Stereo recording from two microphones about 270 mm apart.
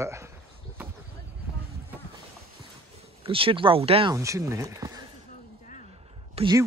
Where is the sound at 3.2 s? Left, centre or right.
Centre.